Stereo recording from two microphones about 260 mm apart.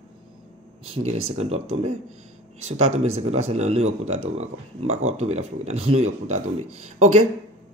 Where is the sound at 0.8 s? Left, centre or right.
Right.